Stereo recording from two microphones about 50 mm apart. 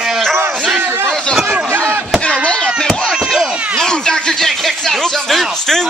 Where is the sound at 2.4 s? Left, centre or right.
Centre.